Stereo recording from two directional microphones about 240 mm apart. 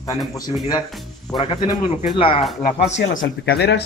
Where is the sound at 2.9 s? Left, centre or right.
Left.